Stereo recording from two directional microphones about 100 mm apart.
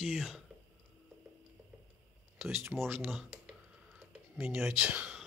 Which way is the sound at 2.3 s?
25° right (ahead or behind).